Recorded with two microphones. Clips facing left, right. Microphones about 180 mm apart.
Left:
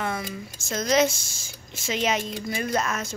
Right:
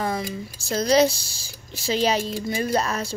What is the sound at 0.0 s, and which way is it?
A woman's voice, 30° right (ahead or behind).